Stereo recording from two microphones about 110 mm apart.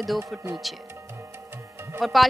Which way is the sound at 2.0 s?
Centre (ahead or behind).